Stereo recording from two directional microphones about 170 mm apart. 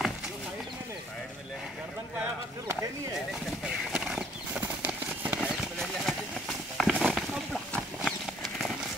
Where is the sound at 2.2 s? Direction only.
15° right (ahead or behind).